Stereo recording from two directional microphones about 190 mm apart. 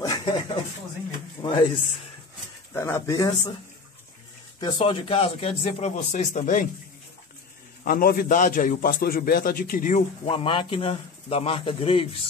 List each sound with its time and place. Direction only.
0.0 s a sound: 20° left (ahead or behind)
2.7 s speech: 15° left (ahead or behind)
4.6 s speech: 30° left (ahead or behind)
7.8 s a man's voice: 50° left (ahead or behind)
10.2 s speech: 25° left (ahead or behind)